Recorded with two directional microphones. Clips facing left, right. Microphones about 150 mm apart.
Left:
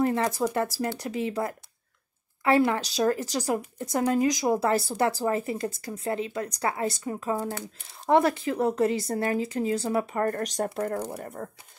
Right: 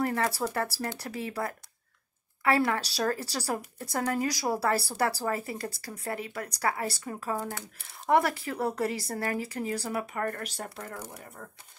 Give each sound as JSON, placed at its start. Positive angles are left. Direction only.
{"t": 0.0, "sound": "speech", "side_deg": 20}